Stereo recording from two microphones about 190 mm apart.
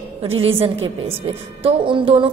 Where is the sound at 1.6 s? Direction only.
25° right (ahead or behind).